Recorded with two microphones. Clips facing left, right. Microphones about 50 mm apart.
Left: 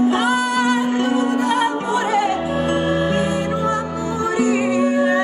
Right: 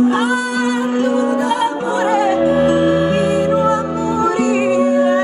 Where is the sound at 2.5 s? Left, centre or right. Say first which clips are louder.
Right 6 dB; right.